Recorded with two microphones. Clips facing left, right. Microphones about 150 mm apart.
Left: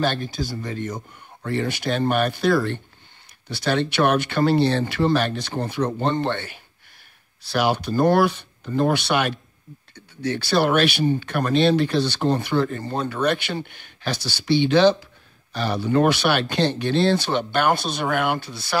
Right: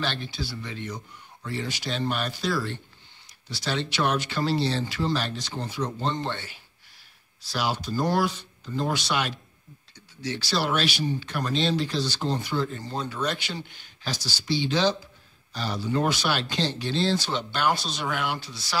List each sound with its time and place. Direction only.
0.0 s speech: 45° left (ahead or behind)